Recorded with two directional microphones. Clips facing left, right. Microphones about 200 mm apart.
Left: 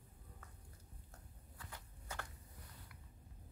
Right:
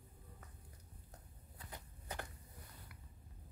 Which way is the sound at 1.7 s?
20° right (ahead or behind).